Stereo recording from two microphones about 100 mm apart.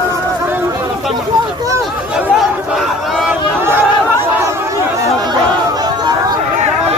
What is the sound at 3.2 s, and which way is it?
Speech, 20° right (ahead or behind).